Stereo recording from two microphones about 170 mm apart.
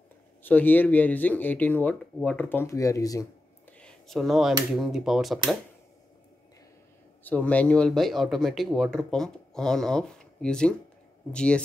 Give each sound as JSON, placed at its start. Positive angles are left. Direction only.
{"t": 0.4, "sound": "speech", "side_deg": 10}
{"t": 3.8, "sound": "speech", "side_deg": 0}
{"t": 7.2, "sound": "speech", "side_deg": 10}